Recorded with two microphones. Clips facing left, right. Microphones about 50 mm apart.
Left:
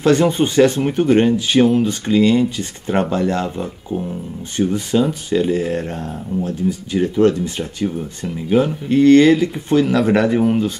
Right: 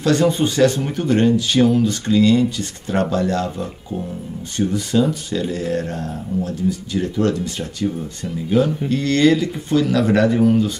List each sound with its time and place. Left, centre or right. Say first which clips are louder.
0.0 s speech: left 2 dB; left
3.4 s speech: left 2 dB; centre
4.6 s speech: left 1 dB; left